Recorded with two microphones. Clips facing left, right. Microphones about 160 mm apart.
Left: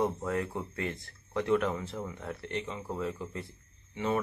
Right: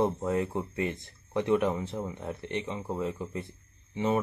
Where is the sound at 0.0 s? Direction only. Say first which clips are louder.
Right 3 dB; 20° right (ahead or behind).